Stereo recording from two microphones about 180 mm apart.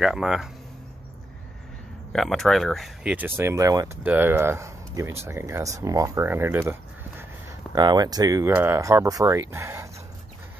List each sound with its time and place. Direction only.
0.0 s speech: centre (ahead or behind)
2.1 s speech: centre (ahead or behind); by 9.8 s 15° right (ahead or behind)